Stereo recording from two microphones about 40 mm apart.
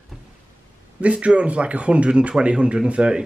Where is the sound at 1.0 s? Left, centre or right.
Right.